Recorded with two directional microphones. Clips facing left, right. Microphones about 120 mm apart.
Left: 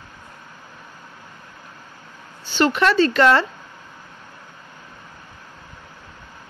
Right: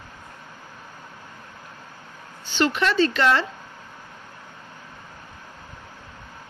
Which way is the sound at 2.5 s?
45° left (ahead or behind).